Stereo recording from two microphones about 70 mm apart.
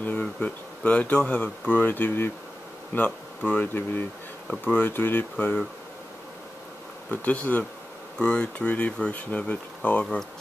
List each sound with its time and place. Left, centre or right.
0.2 s speech: centre
7.1 s speech: left